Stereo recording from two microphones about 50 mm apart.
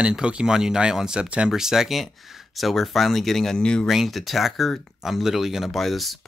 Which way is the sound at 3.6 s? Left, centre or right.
Centre.